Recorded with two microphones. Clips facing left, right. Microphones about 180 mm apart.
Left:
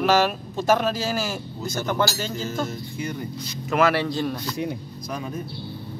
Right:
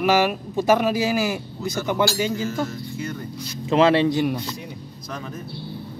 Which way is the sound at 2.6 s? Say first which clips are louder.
Right 1 dB; 15° left (ahead or behind).